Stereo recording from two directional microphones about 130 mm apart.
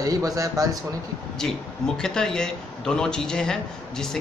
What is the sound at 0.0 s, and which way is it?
Speech, 25° right (ahead or behind).